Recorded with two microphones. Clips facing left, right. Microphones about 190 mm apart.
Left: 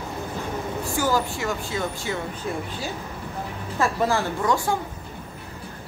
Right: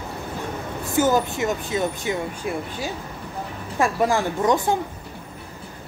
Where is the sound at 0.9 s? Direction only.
20° right (ahead or behind).